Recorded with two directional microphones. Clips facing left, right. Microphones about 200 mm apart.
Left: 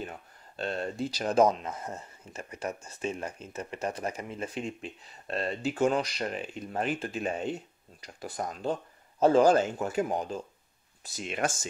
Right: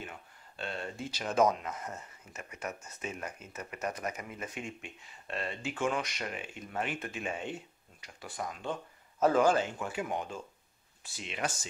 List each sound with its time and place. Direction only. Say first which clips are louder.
0.6 s speech: left 7 dB; 40° left (ahead or behind)